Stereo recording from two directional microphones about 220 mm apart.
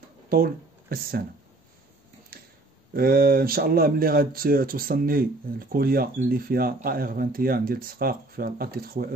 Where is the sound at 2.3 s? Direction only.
45° right (ahead or behind).